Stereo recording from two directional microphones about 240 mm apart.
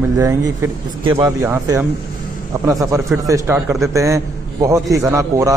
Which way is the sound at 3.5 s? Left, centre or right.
Centre.